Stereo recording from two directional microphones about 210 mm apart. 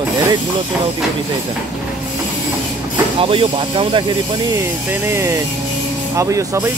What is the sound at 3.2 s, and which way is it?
Speech, 25° right (ahead or behind).